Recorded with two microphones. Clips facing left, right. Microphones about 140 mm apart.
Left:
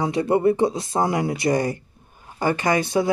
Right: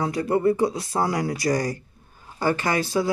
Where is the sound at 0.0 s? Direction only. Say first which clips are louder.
Left 2 dB; 25° left (ahead or behind).